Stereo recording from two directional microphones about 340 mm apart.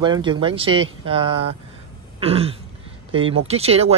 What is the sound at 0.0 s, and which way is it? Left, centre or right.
Speech, centre.